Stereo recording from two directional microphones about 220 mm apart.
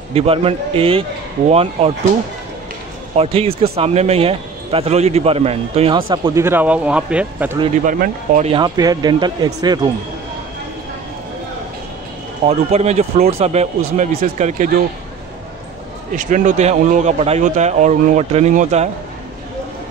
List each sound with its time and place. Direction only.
0.1 s a man's voice: 25° right (ahead or behind)
3.2 s a man's voice: 25° right (ahead or behind); by 7.5 s 5° right (ahead or behind)
7.8 s a man's voice: 35° right (ahead or behind)
8.5 s a man's voice: 20° right (ahead or behind)
12.4 s a man's voice: 30° right (ahead or behind)
16.2 s a man's voice: 35° right (ahead or behind)